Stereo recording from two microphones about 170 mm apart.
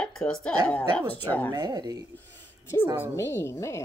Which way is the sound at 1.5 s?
25° right (ahead or behind).